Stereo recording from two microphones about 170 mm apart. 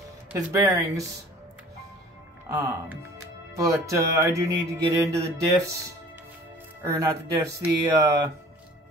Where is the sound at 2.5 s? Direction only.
15° right (ahead or behind).